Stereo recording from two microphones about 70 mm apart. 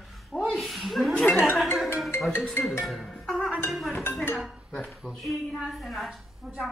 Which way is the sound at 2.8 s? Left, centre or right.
Centre.